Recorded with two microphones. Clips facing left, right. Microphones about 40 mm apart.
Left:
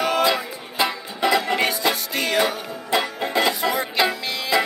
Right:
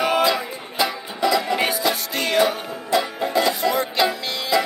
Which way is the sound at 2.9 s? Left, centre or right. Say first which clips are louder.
Right 1 dB; left.